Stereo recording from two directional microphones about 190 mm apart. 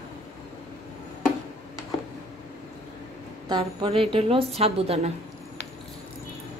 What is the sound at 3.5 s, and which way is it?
A woman's voice, 25° right (ahead or behind).